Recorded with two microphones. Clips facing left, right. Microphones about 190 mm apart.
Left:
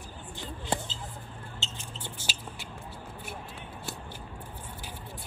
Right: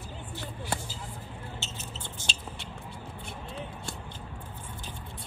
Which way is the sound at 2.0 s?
10° left (ahead or behind).